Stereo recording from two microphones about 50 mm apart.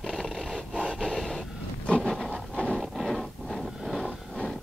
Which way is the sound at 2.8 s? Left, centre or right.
Centre.